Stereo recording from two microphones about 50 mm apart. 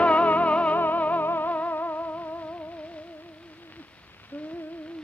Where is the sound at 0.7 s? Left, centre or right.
Left.